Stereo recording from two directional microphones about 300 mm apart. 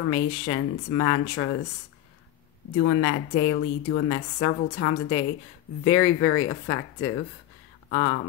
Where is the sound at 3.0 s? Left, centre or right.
Left.